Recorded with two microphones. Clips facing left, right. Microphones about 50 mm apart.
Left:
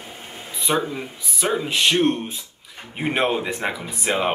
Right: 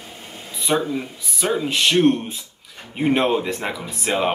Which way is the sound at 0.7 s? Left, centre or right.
Centre.